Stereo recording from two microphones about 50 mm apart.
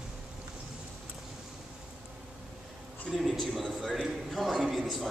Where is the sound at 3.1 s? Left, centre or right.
Centre.